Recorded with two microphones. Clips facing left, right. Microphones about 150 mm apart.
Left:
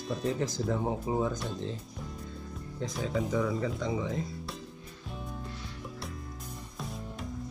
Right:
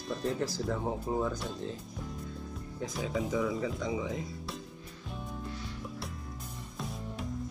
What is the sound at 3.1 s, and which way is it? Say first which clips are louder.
Speech: left 1 dB; 5° right (ahead or behind).